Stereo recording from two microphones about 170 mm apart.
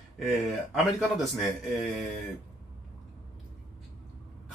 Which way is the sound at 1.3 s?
Centre (ahead or behind).